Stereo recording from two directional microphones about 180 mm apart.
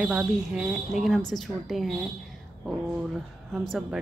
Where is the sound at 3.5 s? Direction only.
5° right (ahead or behind).